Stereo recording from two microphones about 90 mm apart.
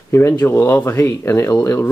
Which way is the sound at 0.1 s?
25° left (ahead or behind).